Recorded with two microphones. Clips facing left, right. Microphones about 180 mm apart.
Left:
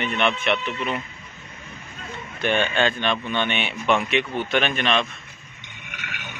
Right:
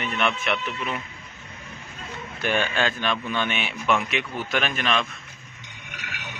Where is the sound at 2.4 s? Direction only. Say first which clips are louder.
Left 3 dB; 5° right (ahead or behind).